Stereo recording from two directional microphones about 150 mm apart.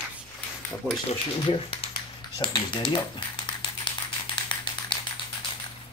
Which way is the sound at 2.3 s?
30° left (ahead or behind).